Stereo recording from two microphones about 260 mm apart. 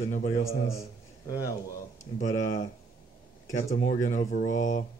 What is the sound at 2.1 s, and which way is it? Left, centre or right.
Speech, left.